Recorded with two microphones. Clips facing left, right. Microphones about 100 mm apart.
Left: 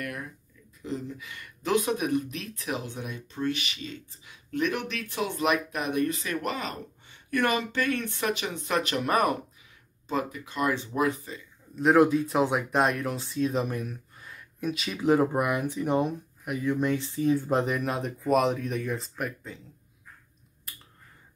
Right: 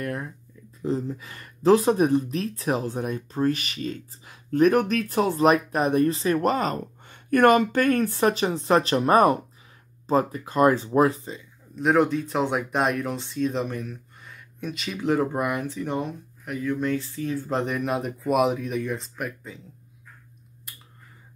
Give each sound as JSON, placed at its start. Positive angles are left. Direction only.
{"t": 0.0, "sound": "a sound", "side_deg": -30}
{"t": 0.8, "sound": "speech", "side_deg": -35}
{"t": 11.7, "sound": "speech", "side_deg": 0}
{"t": 17.6, "sound": "speech", "side_deg": 0}